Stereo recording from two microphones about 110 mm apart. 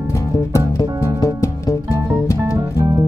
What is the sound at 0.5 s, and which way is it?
Music, 30° left (ahead or behind).